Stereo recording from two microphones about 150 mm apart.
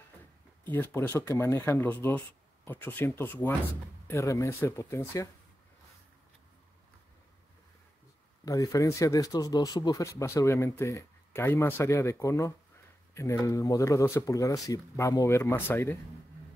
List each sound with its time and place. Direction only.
0.7 s speech: 15° left (ahead or behind)
8.5 s speech: 25° left (ahead or behind)